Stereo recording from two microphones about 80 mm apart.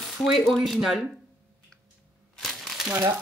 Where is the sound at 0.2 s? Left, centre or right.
Centre.